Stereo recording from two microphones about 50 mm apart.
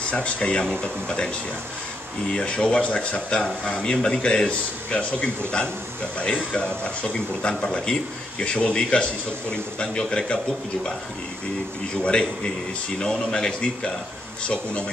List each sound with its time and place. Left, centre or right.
0.0 s speech: left
11.9 s speech: centre